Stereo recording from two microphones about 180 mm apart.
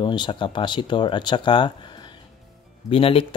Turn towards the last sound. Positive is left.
turn(degrees=30)  # may be behind; listen again after turning